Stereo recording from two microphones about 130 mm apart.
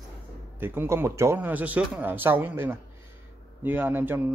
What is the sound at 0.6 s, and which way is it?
A man's voice, 15° right (ahead or behind).